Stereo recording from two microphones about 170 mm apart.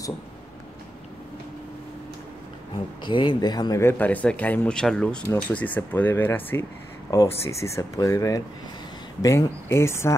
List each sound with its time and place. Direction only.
3.1 s speech: 30° left (ahead or behind)